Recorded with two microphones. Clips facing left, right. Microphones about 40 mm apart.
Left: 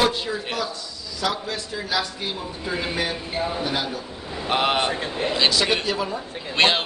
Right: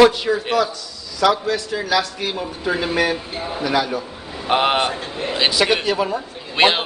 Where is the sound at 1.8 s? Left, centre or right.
Right.